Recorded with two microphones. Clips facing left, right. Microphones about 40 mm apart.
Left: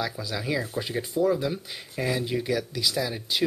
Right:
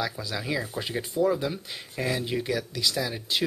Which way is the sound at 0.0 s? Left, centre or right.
Centre.